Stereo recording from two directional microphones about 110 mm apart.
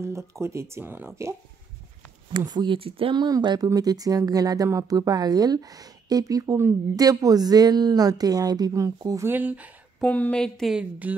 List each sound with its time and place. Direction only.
0.0 s speech: 25° right (ahead or behind)
2.3 s speech: 45° right (ahead or behind)
9.3 s speech: 15° right (ahead or behind)
10.0 s speech: 15° left (ahead or behind)
10.7 s speech: 10° right (ahead or behind)